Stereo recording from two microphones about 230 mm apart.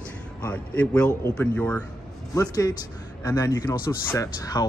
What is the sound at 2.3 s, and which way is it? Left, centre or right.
A man's voice, centre.